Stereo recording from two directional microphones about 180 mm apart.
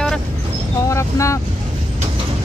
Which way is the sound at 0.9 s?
15° left (ahead or behind).